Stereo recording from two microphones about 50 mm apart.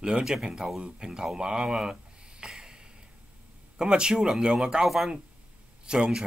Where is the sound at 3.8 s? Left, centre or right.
Centre.